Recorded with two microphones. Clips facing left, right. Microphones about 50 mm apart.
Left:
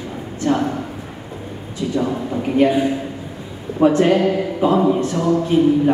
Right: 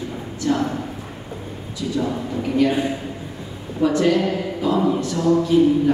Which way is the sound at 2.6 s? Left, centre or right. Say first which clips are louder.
Left 4 dB; left.